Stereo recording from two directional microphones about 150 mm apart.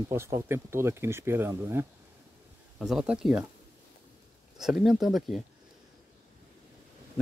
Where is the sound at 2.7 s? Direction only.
Centre (ahead or behind).